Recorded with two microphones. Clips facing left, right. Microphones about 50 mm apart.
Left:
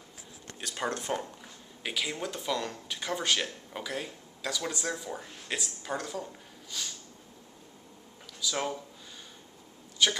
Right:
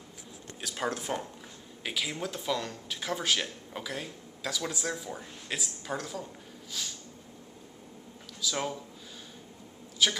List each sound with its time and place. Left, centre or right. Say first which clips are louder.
0.6 s speech: even; centre
8.4 s speech: even; centre
10.0 s speech: left 1 dB; centre